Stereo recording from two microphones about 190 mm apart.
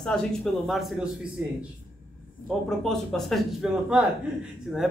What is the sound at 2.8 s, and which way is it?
Speech, centre (ahead or behind).